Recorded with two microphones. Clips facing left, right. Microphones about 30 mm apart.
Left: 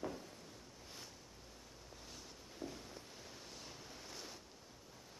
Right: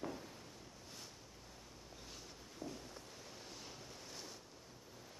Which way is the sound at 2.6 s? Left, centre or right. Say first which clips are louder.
Even; left.